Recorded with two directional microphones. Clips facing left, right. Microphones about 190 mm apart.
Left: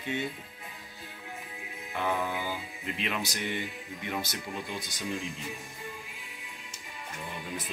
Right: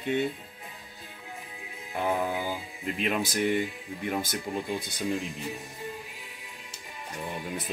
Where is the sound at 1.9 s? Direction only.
35° right (ahead or behind).